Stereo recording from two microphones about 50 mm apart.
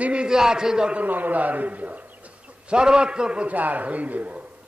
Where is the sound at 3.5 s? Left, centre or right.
Right.